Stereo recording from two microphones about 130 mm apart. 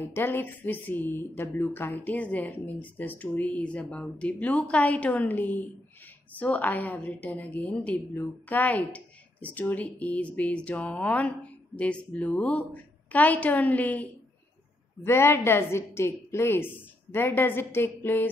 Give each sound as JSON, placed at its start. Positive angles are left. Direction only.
{"t": 0.0, "sound": "a woman's voice", "side_deg": 20}
{"t": 15.0, "sound": "a woman's voice", "side_deg": 20}